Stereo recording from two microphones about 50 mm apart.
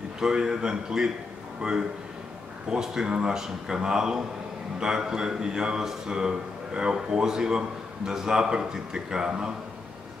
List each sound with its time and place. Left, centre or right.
0.2 s a man's voice: centre